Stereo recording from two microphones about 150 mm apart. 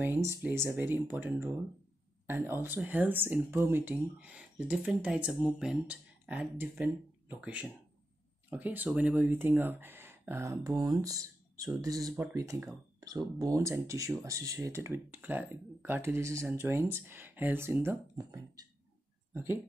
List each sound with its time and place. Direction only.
0.0 s speech: 15° right (ahead or behind)